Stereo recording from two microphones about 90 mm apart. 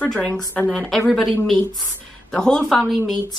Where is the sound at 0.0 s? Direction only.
15° left (ahead or behind).